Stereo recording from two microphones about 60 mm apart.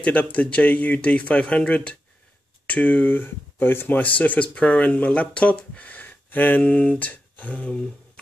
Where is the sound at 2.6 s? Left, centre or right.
Left.